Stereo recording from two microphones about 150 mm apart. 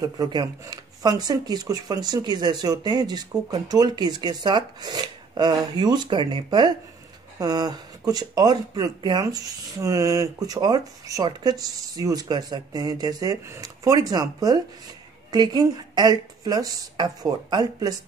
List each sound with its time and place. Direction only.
0.0 s speech: 25° right (ahead or behind)